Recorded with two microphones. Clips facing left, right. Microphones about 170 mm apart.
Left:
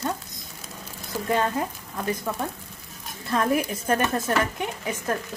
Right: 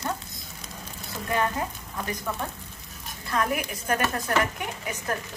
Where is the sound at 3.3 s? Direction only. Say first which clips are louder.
Left 4 dB; 25° left (ahead or behind).